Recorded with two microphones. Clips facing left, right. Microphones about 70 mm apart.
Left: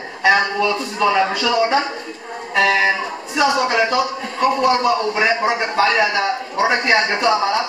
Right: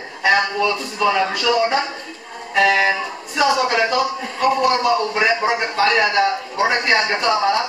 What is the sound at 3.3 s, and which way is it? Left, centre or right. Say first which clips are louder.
A man's voice: even; centre.